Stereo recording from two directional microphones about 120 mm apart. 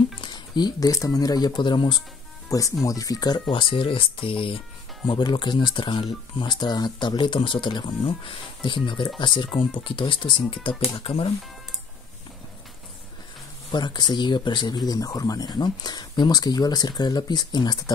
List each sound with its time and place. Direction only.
0.2 s speech: 35° left (ahead or behind)
2.8 s speech: 30° left (ahead or behind); by 11.2 s 50° left (ahead or behind)
13.7 s speech: 35° left (ahead or behind)